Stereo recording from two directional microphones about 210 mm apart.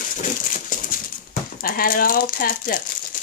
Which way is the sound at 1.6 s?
45° left (ahead or behind).